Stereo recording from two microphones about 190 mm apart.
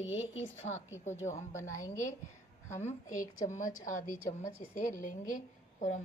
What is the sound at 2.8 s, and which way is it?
A woman's voice, 40° left (ahead or behind).